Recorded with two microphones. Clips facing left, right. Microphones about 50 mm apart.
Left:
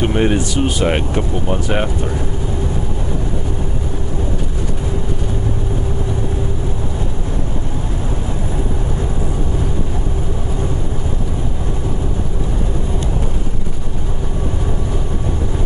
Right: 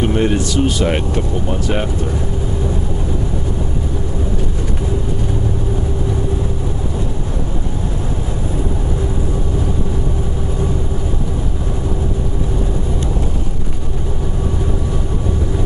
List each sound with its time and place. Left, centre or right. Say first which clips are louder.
0.0 s speech: even; centre